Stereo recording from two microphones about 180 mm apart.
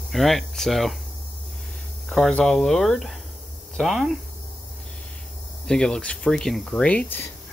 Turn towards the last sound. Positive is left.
turn(degrees=10)  # may be behind; listen again after turning